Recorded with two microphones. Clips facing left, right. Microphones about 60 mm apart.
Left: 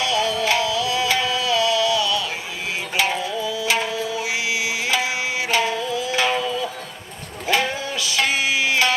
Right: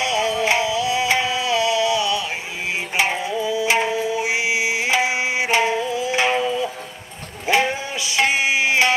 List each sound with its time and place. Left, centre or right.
0.0 s music: right